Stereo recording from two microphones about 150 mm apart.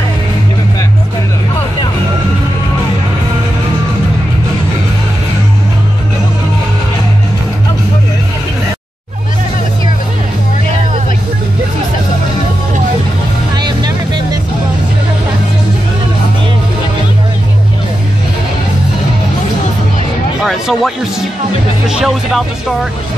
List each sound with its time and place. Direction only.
13.6 s music: 30° right (ahead or behind)
20.4 s music: centre (ahead or behind)
21.8 s speech: 5° right (ahead or behind)